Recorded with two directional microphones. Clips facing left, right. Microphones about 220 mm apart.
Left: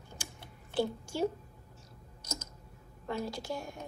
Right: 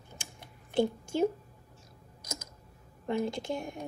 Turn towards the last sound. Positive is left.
turn(degrees=-20)  # may be behind; listen again after turning